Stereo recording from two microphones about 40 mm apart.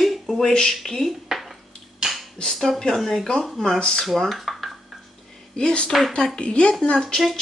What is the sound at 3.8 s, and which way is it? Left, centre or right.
Speech, centre.